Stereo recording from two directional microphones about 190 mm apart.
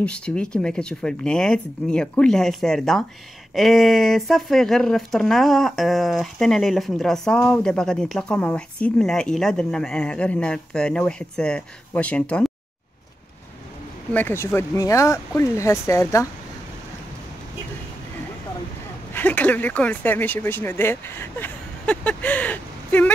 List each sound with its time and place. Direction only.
0.0 s speech: 5° left (ahead or behind)
14.1 s speech: 10° left (ahead or behind)
19.1 s speech: 10° left (ahead or behind)